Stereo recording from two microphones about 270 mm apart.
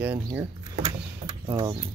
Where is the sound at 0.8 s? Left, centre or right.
Centre.